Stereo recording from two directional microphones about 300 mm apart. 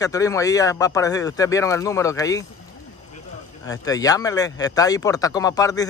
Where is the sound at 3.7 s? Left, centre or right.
Centre.